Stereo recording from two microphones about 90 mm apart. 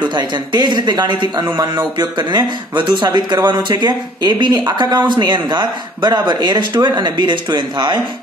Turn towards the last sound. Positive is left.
turn(degrees=-55)  # may be behind; listen again after turning